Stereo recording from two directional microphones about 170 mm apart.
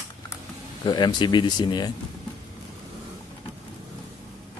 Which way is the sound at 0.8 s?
25° left (ahead or behind).